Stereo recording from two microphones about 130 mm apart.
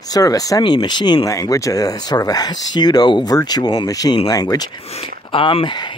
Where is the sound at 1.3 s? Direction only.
25° left (ahead or behind).